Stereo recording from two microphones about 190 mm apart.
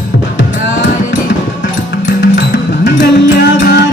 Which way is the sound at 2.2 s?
65° left (ahead or behind).